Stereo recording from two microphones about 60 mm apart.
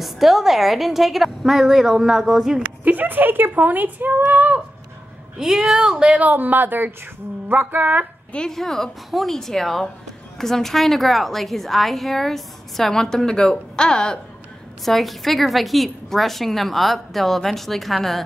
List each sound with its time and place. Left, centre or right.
0.0 s a woman's voice: centre
2.8 s speech: right
5.4 s speech: centre
6.4 s a woman's voice: right
8.3 s a woman's voice: centre
14.9 s a woman's voice: centre